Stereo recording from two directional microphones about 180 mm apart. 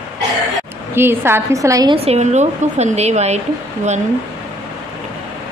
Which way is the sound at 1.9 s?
35° right (ahead or behind).